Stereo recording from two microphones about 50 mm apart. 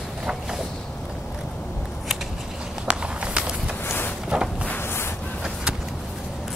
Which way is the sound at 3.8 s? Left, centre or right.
Left.